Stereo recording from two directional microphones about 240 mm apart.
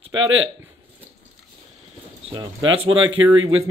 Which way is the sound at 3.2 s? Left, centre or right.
Right.